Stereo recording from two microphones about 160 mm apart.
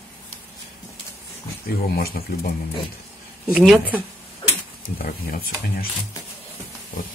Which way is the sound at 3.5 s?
5° right (ahead or behind).